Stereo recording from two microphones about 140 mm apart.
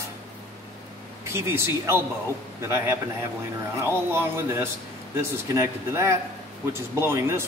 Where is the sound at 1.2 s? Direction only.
20° right (ahead or behind).